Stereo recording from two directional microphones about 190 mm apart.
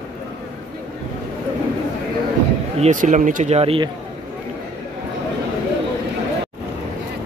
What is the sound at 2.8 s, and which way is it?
Speech, 40° right (ahead or behind).